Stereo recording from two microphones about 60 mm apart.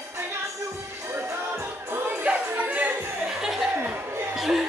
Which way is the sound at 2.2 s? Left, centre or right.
Right.